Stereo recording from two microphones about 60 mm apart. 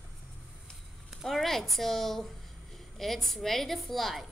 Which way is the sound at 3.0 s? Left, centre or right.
Centre.